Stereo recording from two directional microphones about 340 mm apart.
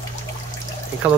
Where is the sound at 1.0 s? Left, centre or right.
Centre.